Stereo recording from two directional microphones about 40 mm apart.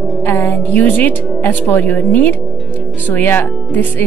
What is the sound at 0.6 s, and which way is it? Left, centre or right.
Speech, left.